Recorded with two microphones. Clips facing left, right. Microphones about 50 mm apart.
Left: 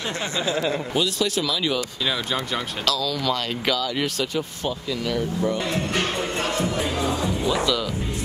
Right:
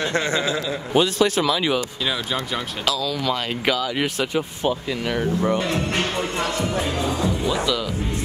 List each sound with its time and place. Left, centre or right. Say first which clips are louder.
0.9 s speech: right 9 dB; right
2.8 s speech: right 1 dB; centre; by 6.4 s right
7.1 s speech: right 1 dB; centre